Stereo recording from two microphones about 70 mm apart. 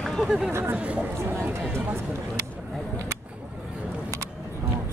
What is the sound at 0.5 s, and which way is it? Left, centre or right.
Speech, right.